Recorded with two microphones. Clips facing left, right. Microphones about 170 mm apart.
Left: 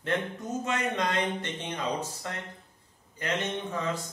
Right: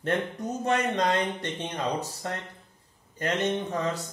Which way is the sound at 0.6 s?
40° right (ahead or behind).